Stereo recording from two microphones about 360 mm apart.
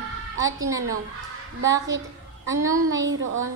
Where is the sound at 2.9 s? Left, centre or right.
Right.